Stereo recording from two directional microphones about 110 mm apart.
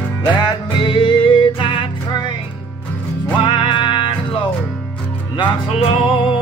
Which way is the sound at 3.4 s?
50° left (ahead or behind).